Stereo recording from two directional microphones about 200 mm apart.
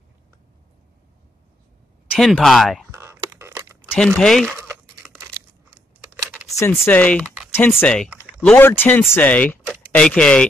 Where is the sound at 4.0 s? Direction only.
5° left (ahead or behind).